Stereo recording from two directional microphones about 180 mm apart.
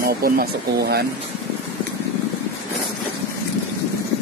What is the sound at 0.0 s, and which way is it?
Speech, 55° right (ahead or behind).